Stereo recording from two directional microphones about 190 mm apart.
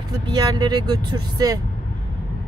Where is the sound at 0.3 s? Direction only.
20° right (ahead or behind).